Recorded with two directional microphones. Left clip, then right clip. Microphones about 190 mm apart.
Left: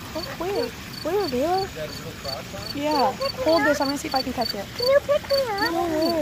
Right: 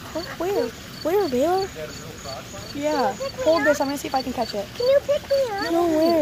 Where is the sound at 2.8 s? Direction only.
50° right (ahead or behind).